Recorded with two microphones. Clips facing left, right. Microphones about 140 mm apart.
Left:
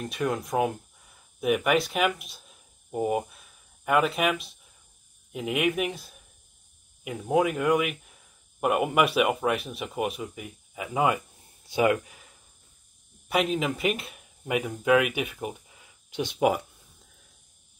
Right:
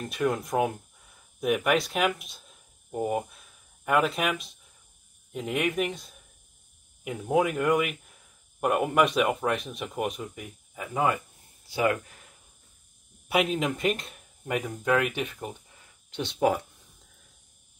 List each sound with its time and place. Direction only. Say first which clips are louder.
0.0 s speech: right 1 dB; centre (ahead or behind); by 12.0 s 20° left (ahead or behind)
12.1 s a sound: left 1 dB; 5° left (ahead or behind)
13.3 s speech: even; centre (ahead or behind)